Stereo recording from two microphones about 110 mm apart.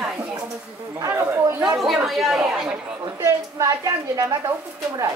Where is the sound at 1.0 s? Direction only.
20° right (ahead or behind).